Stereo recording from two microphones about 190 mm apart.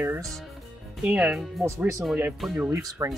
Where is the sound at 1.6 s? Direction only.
15° right (ahead or behind).